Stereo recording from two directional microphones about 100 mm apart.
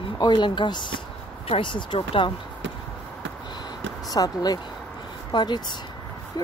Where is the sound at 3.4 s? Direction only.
45° left (ahead or behind).